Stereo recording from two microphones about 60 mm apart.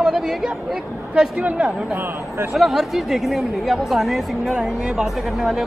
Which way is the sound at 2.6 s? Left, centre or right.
Centre.